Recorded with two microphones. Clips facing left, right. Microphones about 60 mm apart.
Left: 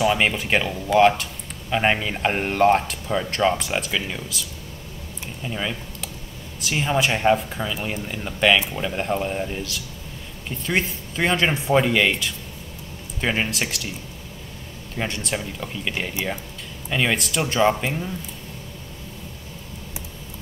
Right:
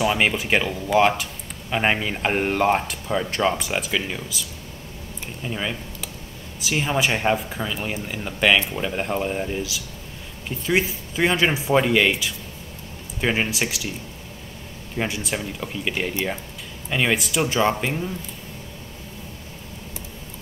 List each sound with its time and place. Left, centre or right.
0.0 s speech: centre
15.0 s speech: centre